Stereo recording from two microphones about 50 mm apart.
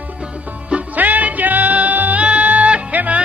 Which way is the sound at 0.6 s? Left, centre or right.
Right.